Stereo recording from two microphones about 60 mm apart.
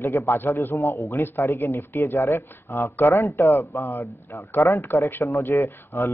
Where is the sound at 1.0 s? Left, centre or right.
Left.